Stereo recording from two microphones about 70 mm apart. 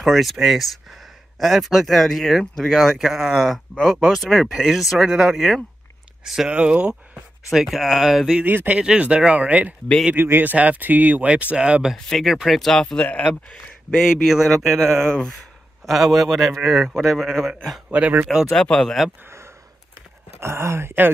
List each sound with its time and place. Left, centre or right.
0.0 s a man's voice: centre
7.5 s a man's voice: centre
8.4 s speech: right
10.1 s speech: right; by 11.9 s centre
12.1 s a man's voice: centre
17.8 s speech: centre
18.5 s speech: centre
20.3 s speech: right